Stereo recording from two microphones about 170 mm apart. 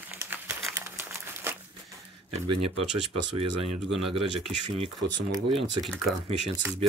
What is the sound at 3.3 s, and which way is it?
Speech, 35° right (ahead or behind).